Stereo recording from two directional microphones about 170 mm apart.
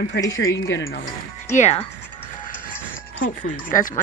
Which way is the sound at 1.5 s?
45° left (ahead or behind).